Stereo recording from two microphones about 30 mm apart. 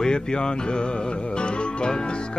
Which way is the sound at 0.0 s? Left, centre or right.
Left.